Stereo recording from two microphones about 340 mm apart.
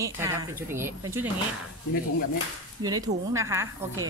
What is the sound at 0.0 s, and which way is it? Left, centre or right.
Speech, centre.